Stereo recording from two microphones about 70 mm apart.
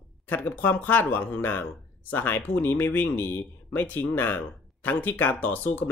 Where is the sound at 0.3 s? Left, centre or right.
Left.